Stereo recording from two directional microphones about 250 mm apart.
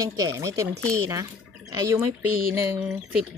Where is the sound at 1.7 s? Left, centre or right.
Centre.